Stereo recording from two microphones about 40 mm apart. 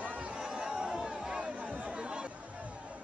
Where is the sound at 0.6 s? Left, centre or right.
Centre.